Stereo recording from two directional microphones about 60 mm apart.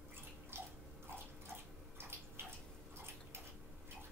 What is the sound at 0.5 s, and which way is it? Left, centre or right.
Biting, right.